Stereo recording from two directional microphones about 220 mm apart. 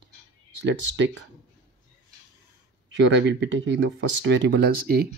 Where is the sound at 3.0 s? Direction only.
55° right (ahead or behind).